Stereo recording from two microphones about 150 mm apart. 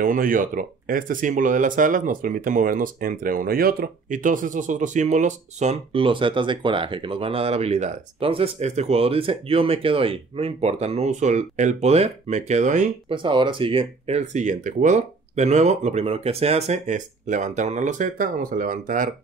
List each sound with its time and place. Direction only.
0.0 s speech: 65° right (ahead or behind)
13.1 s speech: 35° right (ahead or behind); by 19.0 s 60° right (ahead or behind)